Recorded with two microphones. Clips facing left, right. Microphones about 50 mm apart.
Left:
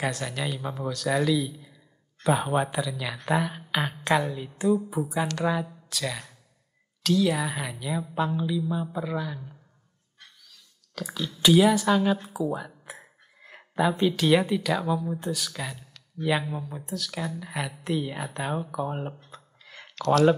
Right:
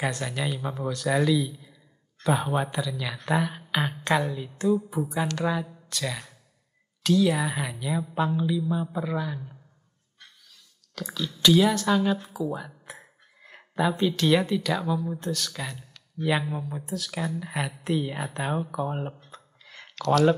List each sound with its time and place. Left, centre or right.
0.0 s speech: centre
11.1 s speech: centre